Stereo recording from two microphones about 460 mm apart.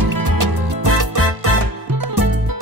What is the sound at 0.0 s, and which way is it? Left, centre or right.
Music, right.